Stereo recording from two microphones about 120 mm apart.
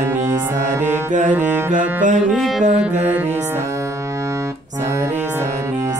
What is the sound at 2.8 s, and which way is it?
Speech, 70° right (ahead or behind).